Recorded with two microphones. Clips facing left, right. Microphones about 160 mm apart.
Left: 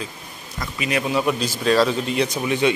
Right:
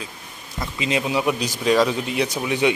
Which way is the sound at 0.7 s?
20° right (ahead or behind).